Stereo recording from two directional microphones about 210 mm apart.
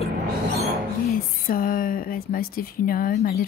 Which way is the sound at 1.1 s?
40° left (ahead or behind).